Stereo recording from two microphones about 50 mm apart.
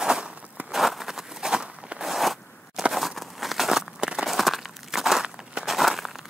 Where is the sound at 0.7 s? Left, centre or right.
Centre.